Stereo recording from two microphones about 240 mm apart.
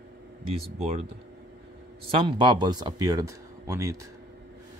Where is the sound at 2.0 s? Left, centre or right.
Right.